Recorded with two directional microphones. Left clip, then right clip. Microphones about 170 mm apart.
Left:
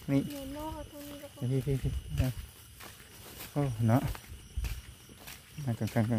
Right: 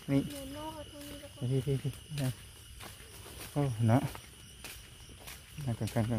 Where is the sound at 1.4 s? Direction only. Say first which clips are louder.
Even; 15° left (ahead or behind).